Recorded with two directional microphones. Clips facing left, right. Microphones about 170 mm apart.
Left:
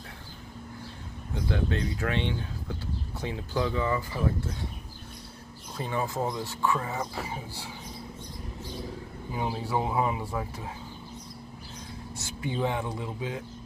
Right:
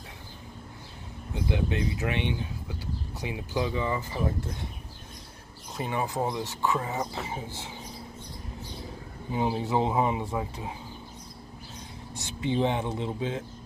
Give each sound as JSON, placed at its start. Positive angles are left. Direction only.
{"t": 1.3, "sound": "speech", "side_deg": -15}
{"t": 5.8, "sound": "speech", "side_deg": -15}
{"t": 9.3, "sound": "speech", "side_deg": -20}
{"t": 12.2, "sound": "speech", "side_deg": -20}